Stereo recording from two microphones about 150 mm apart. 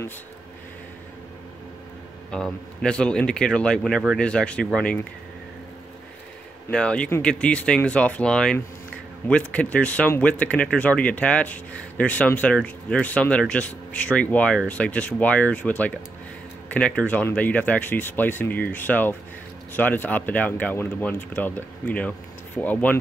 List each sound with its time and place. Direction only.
2.3 s speech: 5° left (ahead or behind)
6.7 s speech: 5° left (ahead or behind)